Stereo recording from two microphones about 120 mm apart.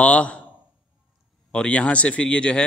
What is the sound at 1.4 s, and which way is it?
Speech, 10° left (ahead or behind).